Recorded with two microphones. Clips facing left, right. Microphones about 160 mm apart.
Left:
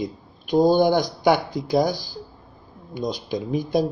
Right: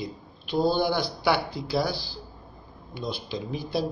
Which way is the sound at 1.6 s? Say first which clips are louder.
Left 8 dB; 45° left (ahead or behind).